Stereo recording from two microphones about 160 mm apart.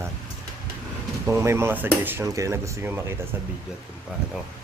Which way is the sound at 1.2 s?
15° right (ahead or behind).